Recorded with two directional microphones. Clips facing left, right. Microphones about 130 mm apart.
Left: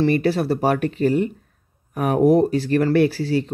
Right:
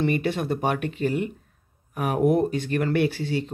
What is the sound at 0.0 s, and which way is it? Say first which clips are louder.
Speech: left 6 dB; 35° left (ahead or behind).